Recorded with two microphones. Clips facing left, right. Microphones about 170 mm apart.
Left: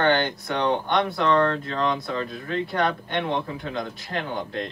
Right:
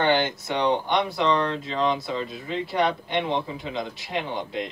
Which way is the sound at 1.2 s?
20° right (ahead or behind).